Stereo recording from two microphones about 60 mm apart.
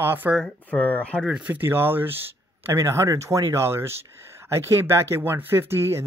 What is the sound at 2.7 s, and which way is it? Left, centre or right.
Speech, right.